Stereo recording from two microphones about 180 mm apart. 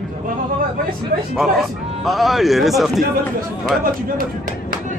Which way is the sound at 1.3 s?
Centre (ahead or behind).